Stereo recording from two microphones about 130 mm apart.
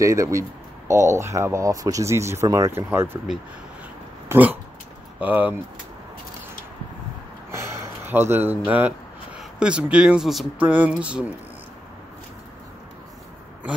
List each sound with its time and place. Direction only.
0.0 s speech: 25° right (ahead or behind)
4.3 s speech: 15° right (ahead or behind)
7.5 s a sound: 20° right (ahead or behind)
9.6 s speech: 10° right (ahead or behind)